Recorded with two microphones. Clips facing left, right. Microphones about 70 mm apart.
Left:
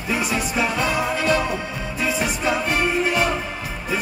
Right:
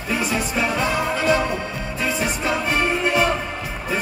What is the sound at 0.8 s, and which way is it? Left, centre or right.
Music, right.